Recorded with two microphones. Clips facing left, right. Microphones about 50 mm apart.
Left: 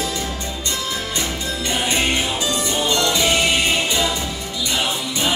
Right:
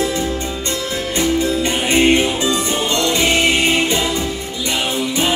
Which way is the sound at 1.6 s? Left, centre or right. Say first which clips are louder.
Right 4 dB; right.